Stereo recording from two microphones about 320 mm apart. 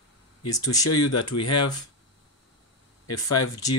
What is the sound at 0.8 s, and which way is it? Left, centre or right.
Speech, left.